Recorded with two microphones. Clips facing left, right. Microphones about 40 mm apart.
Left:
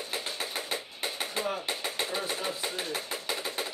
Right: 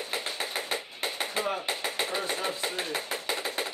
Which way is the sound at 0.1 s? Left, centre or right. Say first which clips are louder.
Right 2 dB; centre.